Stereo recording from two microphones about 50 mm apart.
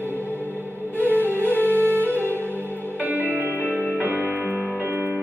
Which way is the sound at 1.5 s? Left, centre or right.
Left.